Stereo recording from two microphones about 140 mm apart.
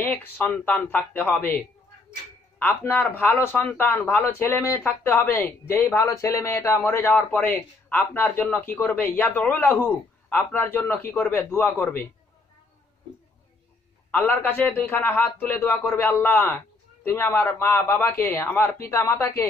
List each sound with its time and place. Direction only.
0.0 s a man's voice: 15° left (ahead or behind)
2.6 s a man's voice: 15° left (ahead or behind)
14.1 s a man's voice: 15° left (ahead or behind)